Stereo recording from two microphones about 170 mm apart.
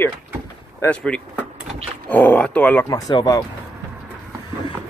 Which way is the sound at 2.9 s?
20° left (ahead or behind).